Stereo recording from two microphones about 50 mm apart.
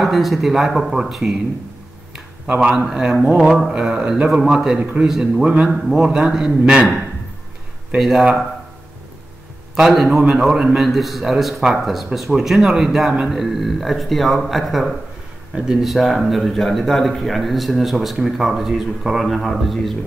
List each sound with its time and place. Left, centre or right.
0.0 s a man's voice: centre
2.4 s speech: right
2.7 s a man's voice: centre
3.0 s mantra: centre
4.3 s a man's voice: centre
4.7 s a man's voice: right
5.0 s mantra: centre
5.4 s mantra: centre
6.6 s speech: centre
8.0 s mantra: centre
9.9 s a man's voice: centre